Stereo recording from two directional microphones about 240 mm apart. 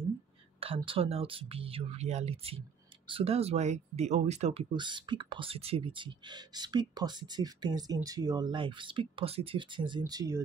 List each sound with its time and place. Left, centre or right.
0.6 s speech: right